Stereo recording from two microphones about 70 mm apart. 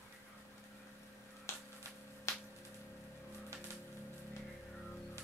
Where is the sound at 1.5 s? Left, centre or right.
Left.